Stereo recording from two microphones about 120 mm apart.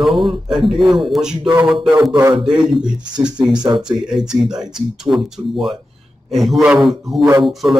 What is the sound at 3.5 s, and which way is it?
Speech, 35° right (ahead or behind).